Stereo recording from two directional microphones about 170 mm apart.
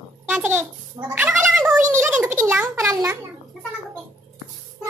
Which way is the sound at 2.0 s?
10° right (ahead or behind).